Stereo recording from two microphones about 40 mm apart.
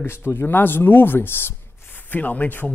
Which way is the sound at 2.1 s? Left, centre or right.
Left.